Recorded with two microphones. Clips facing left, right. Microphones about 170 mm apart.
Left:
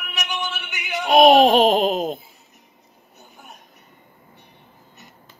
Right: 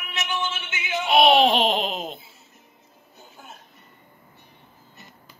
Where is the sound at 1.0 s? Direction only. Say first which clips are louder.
Left 5 dB; 45° left (ahead or behind).